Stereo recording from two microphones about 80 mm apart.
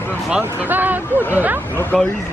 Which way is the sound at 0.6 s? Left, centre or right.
Right.